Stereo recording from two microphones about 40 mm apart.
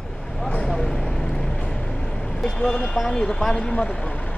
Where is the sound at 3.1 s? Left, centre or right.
Centre.